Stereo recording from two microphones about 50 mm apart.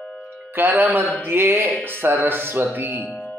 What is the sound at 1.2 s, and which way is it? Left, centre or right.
Speech, right.